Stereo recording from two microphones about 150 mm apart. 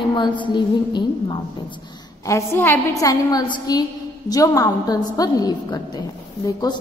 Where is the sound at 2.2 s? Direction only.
20° left (ahead or behind).